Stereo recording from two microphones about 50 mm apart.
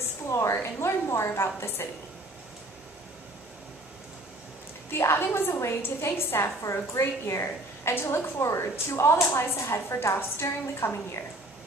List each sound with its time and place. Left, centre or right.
0.0 s a sound: left
0.6 s a woman's voice: left
4.9 s a woman's voice: left
6.6 s a woman's voice: left